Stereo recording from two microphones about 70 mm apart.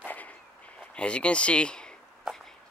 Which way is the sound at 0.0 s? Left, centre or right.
Left.